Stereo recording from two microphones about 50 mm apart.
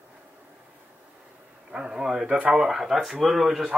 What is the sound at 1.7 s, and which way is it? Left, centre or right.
A man's voice, centre.